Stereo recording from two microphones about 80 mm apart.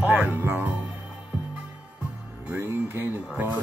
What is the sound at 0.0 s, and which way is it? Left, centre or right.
Music, right.